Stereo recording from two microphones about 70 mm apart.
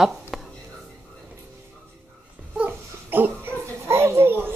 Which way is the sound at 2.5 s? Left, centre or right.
Right.